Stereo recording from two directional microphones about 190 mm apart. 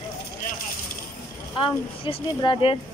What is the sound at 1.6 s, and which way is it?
Speech, 25° left (ahead or behind).